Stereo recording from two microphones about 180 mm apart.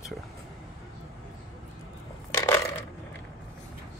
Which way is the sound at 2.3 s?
15° left (ahead or behind).